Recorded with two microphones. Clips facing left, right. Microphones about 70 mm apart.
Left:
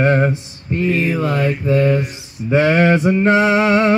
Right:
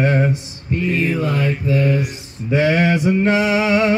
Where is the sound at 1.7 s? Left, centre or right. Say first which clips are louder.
Left 3 dB; centre.